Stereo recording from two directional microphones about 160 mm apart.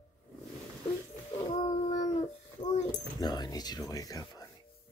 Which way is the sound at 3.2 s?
25° left (ahead or behind).